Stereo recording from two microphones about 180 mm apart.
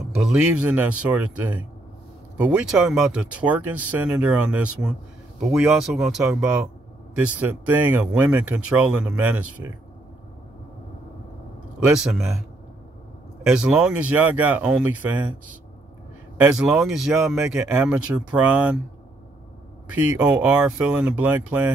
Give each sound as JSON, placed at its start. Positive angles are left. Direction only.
{"t": 0.1, "sound": "speech", "side_deg": -5}
{"t": 11.8, "sound": "speech", "side_deg": -5}
{"t": 16.3, "sound": "speech", "side_deg": -5}
{"t": 19.9, "sound": "speech", "side_deg": -10}